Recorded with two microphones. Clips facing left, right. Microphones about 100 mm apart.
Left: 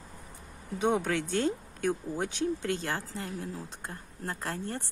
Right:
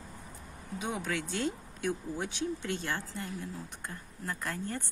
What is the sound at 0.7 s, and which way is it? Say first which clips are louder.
Speech: left 8 dB; 55° left (ahead or behind).